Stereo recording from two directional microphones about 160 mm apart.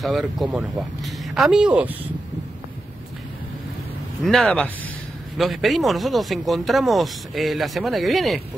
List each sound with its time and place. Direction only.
0.0 s speech: centre (ahead or behind)
4.2 s speech: 5° left (ahead or behind)